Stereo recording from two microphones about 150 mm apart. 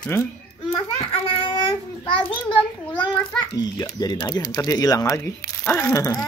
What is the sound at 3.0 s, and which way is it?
A child's voice, 30° left (ahead or behind).